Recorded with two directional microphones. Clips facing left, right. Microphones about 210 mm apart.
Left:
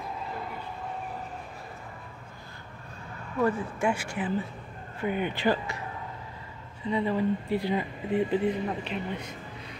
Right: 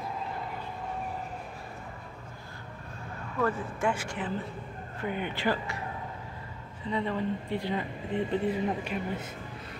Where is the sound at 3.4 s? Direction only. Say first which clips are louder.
Left 2 dB; 10° left (ahead or behind).